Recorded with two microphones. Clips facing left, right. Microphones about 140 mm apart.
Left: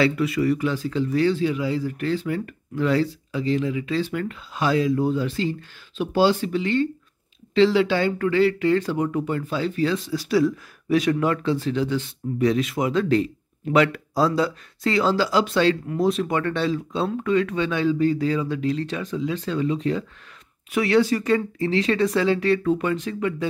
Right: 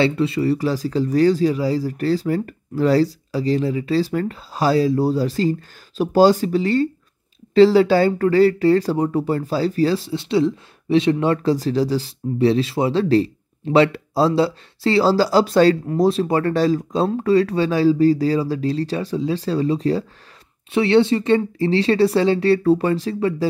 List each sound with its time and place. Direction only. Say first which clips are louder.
0.0 s speech: right 2 dB; 30° right (ahead or behind)